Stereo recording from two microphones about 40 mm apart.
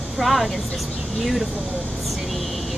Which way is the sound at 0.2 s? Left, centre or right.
Centre.